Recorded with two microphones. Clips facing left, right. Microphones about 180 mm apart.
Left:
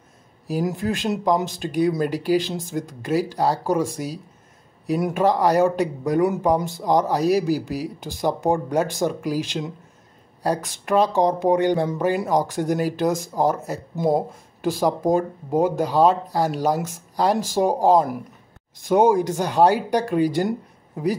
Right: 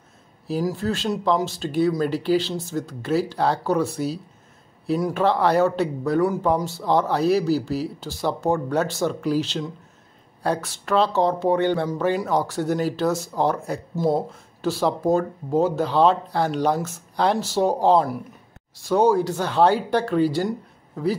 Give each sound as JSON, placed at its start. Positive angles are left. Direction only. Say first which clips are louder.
{"t": 0.5, "sound": "speech", "louder": "even", "side_deg": 15}